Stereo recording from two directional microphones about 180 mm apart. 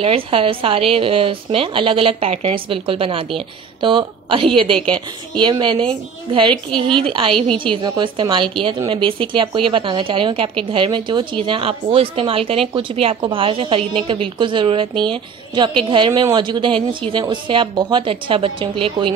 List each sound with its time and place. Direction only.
0.0 s a woman's voice: 30° right (ahead or behind)
6.7 s a woman's voice: 5° left (ahead or behind)
7.1 s speech: 30° right (ahead or behind)